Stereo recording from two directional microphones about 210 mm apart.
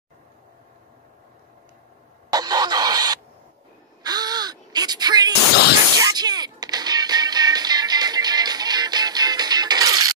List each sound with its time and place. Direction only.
2.3 s a sound: 20° right (ahead or behind)
4.0 s wail: 20° right (ahead or behind)
5.9 s music: 15° right (ahead or behind)